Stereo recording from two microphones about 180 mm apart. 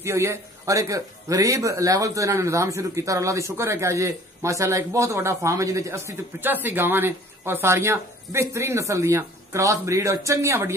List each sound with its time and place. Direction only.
0.0 s speech: 15° right (ahead or behind)